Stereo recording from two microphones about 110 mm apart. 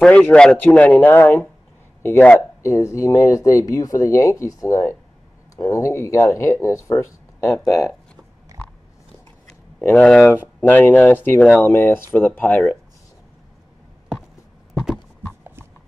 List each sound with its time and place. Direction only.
0.0 s speech: 10° left (ahead or behind); by 7.5 s 25° left (ahead or behind)
7.5 s speech: centre (ahead or behind)
10.6 s speech: 15° left (ahead or behind)
14.7 s a sound: centre (ahead or behind)